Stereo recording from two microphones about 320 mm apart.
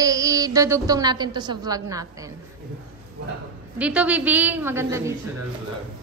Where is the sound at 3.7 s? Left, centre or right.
Centre.